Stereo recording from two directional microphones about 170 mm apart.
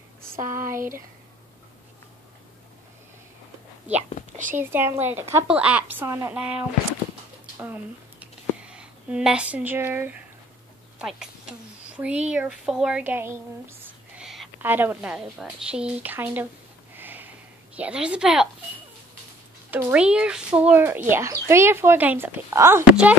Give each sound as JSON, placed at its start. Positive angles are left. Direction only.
{"t": 0.5, "sound": "a child's voice", "side_deg": -15}
{"t": 4.2, "sound": "a sound", "side_deg": 50}
{"t": 4.6, "sound": "a child's voice", "side_deg": -15}
{"t": 7.5, "sound": "a sound", "side_deg": -10}
{"t": 11.0, "sound": "a woman's voice", "side_deg": -5}
{"t": 16.9, "sound": "snort", "side_deg": -10}
{"t": 17.7, "sound": "a woman's voice", "side_deg": -5}
{"t": 19.7, "sound": "a child's voice", "side_deg": -10}